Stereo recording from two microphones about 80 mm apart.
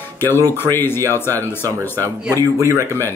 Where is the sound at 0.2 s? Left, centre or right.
Left.